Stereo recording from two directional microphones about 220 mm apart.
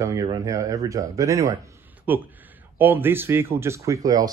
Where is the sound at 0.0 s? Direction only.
15° right (ahead or behind).